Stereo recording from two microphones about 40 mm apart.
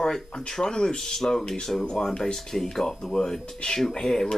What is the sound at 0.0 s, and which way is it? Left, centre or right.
Speech, centre.